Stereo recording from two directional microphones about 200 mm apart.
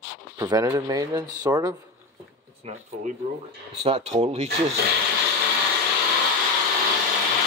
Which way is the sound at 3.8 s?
30° right (ahead or behind).